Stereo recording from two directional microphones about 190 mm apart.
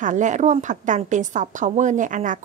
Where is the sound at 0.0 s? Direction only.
40° right (ahead or behind).